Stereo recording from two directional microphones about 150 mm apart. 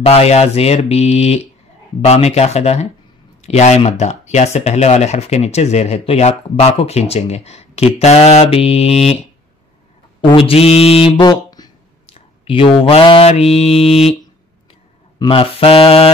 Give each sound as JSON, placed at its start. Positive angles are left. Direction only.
{"t": 0.0, "sound": "speech", "side_deg": 40}
{"t": 10.2, "sound": "speech", "side_deg": 35}
{"t": 12.1, "sound": "mantra", "side_deg": 35}
{"t": 15.1, "sound": "speech", "side_deg": 35}